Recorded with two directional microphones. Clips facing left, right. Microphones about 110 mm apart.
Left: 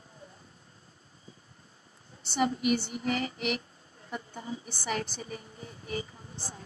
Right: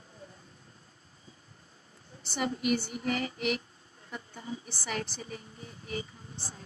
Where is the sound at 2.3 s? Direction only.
25° left (ahead or behind).